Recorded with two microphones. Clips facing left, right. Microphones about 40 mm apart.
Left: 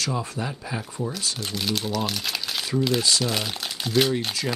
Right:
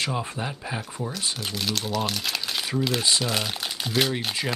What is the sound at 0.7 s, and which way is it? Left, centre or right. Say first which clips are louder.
Speech: left 2 dB; centre.